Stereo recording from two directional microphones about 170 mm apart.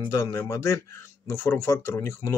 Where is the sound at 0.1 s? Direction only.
15° left (ahead or behind).